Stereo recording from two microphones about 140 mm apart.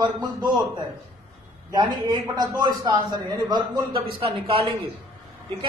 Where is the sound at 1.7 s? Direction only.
30° right (ahead or behind).